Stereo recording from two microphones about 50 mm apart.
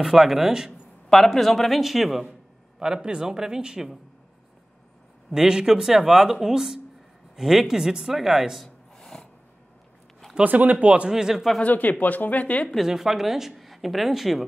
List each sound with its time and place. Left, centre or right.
0.0 s speech: centre
1.1 s a woman's voice: centre
5.3 s speech: centre
8.6 s gasp: centre
10.4 s speech: right
11.1 s speech: centre
11.6 s speech: left
12.8 s a woman's voice: centre